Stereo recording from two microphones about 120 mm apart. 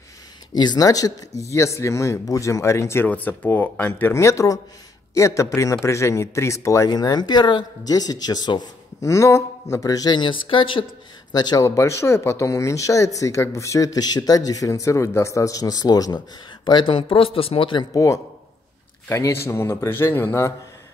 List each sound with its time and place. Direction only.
0.6 s a man's voice: 35° left (ahead or behind)
11.6 s speech: 25° left (ahead or behind); by 17.8 s 45° left (ahead or behind)
17.9 s speech: 25° left (ahead or behind)